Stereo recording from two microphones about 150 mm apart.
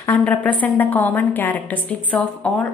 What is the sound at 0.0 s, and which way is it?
A woman's voice, 10° left (ahead or behind).